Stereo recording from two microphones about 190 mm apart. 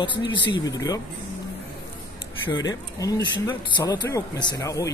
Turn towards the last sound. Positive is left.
turn(degrees=15)  # may be behind; listen again after turning